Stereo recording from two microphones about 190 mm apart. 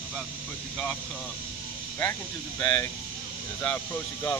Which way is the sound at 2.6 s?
15° left (ahead or behind).